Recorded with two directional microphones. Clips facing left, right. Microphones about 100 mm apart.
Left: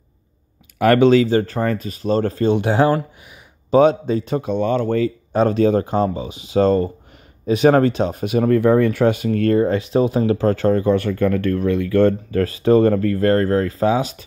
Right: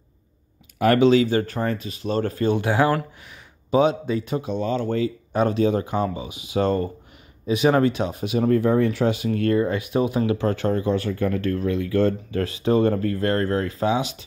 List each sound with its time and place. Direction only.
0.7 s speech: 60° left (ahead or behind)
1.2 s speech: 35° left (ahead or behind)
1.6 s speech: 50° left (ahead or behind); by 3.0 s 25° left (ahead or behind)
3.7 s speech: 40° left (ahead or behind)
5.3 s speech: 35° left (ahead or behind); by 8.5 s 50° left (ahead or behind)
8.5 s speech: 70° left (ahead or behind); by 14.2 s 40° left (ahead or behind)